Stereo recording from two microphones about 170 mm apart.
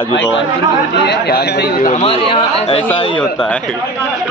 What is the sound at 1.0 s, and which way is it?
Speech, 75° left (ahead or behind).